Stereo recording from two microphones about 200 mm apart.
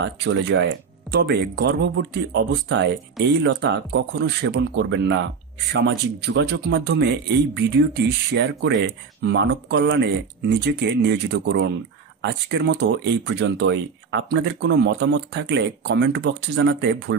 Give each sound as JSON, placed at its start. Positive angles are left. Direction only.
{"t": 0.0, "sound": "speech", "side_deg": -65}